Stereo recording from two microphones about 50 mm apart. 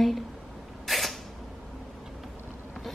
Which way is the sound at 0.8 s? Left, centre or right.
Centre.